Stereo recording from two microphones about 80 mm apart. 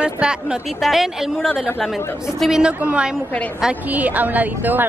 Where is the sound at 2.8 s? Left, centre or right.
Centre.